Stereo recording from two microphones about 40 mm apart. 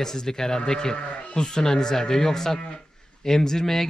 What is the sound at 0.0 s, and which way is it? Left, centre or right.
Speech, centre.